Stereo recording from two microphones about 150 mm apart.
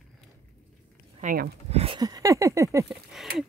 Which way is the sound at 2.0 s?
25° right (ahead or behind).